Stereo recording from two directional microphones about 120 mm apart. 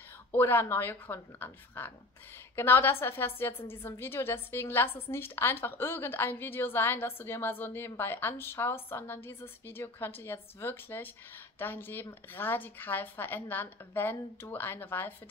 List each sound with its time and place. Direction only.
0.3 s a woman's voice: 15° left (ahead or behind)